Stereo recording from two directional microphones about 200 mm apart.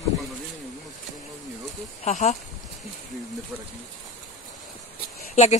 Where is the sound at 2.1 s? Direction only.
35° left (ahead or behind).